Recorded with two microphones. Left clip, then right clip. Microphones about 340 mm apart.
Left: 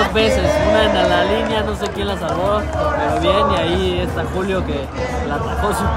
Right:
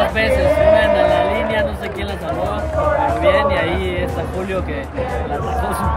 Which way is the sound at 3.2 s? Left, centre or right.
Centre.